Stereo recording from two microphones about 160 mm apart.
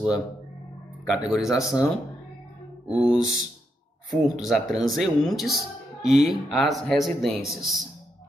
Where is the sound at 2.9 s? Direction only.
10° right (ahead or behind).